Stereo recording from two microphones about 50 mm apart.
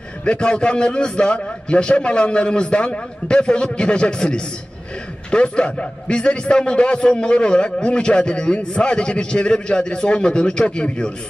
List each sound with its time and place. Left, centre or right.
0.2 s a man's voice: left